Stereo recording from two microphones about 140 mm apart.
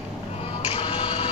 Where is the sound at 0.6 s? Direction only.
45° left (ahead or behind).